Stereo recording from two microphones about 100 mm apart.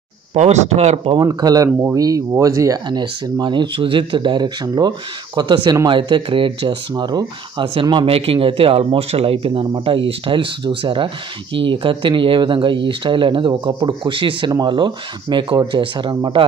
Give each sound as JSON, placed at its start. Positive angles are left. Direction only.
{"t": 0.3, "sound": "speech", "side_deg": -90}
{"t": 1.1, "sound": "speech", "side_deg": -40}
{"t": 2.9, "sound": "speech", "side_deg": -50}